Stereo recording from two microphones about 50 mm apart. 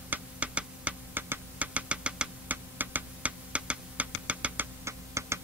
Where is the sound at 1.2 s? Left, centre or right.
Right.